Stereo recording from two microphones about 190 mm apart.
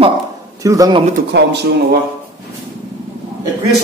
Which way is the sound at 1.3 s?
65° right (ahead or behind).